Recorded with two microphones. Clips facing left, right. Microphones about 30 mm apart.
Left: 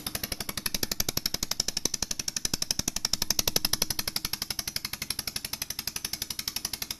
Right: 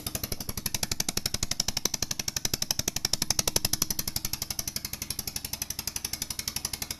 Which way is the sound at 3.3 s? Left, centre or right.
Centre.